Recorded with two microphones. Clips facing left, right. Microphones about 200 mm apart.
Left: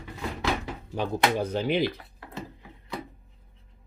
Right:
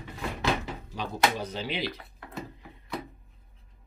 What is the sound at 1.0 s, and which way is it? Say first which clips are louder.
Speech: left 3 dB; 55° left (ahead or behind).